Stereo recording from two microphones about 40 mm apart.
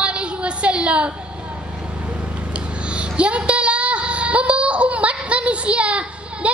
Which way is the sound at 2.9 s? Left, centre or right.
Right.